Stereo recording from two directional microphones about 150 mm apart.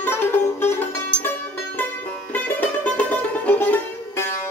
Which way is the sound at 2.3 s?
10° left (ahead or behind).